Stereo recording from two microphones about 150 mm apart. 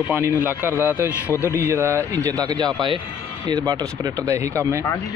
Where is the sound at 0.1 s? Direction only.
15° right (ahead or behind).